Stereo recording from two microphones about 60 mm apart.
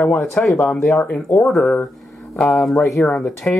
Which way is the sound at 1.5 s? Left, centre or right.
Centre.